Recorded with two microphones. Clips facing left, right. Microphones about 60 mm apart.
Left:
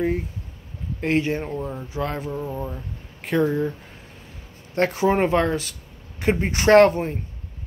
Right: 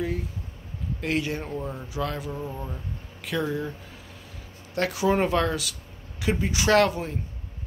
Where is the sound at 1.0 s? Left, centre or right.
Left.